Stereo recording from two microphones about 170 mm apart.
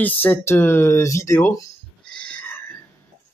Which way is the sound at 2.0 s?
5° left (ahead or behind).